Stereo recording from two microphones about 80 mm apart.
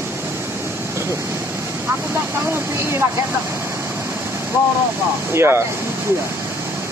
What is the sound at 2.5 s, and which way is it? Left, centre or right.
Speech, right.